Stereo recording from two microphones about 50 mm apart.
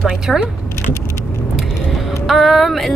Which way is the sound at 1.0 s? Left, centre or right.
Left.